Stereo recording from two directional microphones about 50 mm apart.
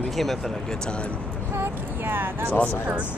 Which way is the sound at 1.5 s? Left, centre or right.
Right.